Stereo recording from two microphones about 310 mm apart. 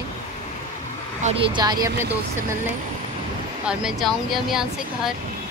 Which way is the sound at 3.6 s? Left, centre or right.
Centre.